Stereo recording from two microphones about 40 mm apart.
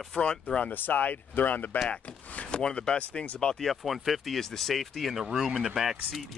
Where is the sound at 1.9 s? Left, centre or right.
Left.